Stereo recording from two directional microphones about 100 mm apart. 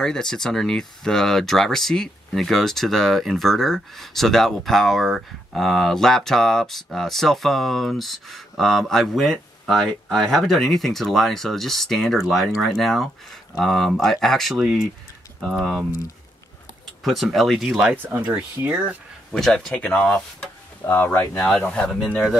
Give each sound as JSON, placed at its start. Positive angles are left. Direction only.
{"t": 0.0, "sound": "speech", "side_deg": 5}
{"t": 17.0, "sound": "speech", "side_deg": 0}
{"t": 18.0, "sound": "speech", "side_deg": -15}
{"t": 19.3, "sound": "speech", "side_deg": 5}
{"t": 21.4, "sound": "speech", "side_deg": 10}